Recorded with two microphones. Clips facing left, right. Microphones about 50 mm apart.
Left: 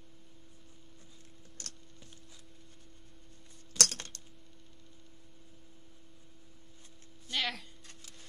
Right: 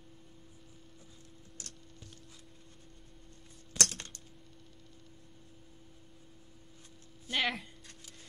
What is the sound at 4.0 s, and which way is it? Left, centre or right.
Typing, left.